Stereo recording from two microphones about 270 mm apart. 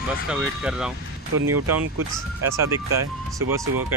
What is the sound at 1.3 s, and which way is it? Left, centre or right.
Speech, right.